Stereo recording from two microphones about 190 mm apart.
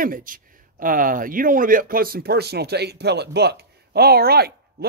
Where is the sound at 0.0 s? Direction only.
45° right (ahead or behind).